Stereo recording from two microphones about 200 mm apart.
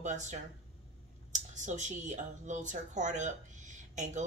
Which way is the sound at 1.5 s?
35° right (ahead or behind).